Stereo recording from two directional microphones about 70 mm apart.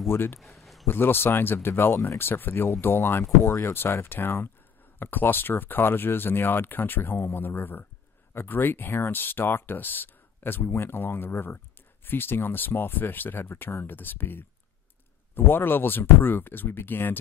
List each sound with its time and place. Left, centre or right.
0.1 s speech: left
0.4 s a sound: centre
0.8 s speech: left